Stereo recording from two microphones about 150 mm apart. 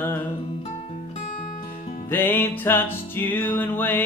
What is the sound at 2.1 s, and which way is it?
Music, 15° left (ahead or behind).